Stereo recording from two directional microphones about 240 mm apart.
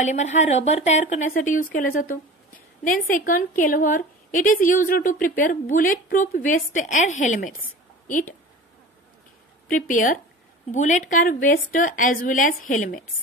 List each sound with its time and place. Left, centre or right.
0.0 s a woman's voice: left
9.7 s a woman's voice: left